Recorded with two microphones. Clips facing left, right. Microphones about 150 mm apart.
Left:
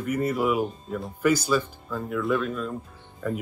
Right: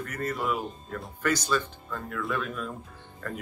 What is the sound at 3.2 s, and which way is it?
Speech, 10° left (ahead or behind).